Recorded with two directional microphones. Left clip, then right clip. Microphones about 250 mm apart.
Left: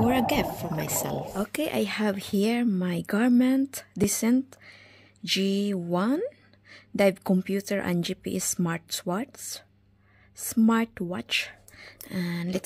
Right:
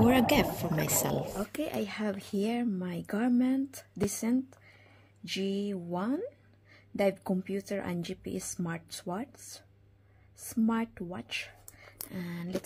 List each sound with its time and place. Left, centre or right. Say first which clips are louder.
0.0 s speech: left 1 dB; centre
1.5 s speech: left 7 dB; left